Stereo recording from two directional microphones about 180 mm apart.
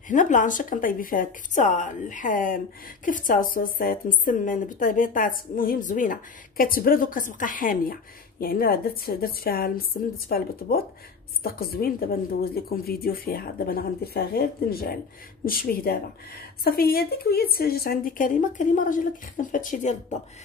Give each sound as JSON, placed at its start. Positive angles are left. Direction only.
{"t": 0.1, "sound": "a woman's voice", "side_deg": 45}